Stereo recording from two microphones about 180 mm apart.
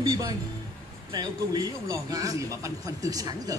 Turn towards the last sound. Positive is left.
turn(degrees=-20)  # may be behind; listen again after turning